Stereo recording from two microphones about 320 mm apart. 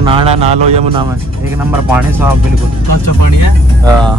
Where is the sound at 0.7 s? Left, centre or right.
Centre.